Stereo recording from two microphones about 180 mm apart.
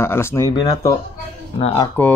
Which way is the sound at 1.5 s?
35° left (ahead or behind).